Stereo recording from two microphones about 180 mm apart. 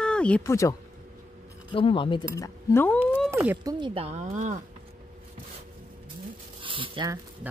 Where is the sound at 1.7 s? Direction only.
30° left (ahead or behind); by 3.0 s 10° left (ahead or behind).